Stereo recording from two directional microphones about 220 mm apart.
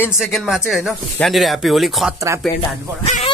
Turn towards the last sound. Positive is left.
turn(degrees=30)  # may be behind; listen again after turning